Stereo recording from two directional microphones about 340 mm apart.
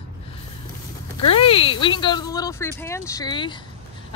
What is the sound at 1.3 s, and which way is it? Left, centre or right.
Speech, centre.